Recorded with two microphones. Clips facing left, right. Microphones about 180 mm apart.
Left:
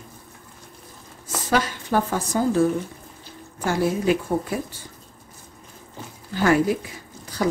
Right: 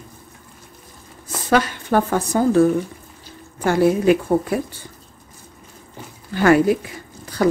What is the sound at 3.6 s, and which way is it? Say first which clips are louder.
Speech: right 6 dB; 60° right (ahead or behind).